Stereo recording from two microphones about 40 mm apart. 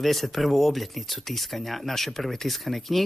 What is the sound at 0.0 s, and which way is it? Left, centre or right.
Speech, centre.